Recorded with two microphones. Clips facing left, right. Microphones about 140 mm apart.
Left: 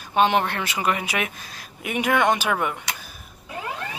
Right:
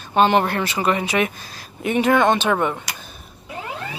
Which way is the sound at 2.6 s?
25° right (ahead or behind).